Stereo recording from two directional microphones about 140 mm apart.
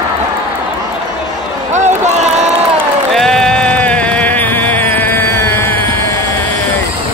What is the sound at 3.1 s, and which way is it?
Music, 5° left (ahead or behind).